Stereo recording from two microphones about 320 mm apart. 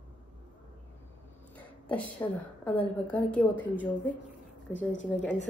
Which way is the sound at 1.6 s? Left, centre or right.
Centre.